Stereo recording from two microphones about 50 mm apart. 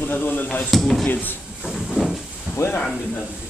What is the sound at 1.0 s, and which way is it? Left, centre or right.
Speech, left.